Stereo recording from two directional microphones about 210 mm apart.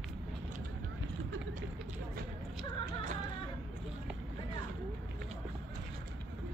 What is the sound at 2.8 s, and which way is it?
Music, 35° right (ahead or behind).